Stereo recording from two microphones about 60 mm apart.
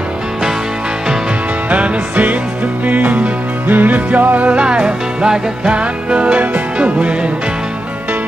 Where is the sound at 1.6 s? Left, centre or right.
Right.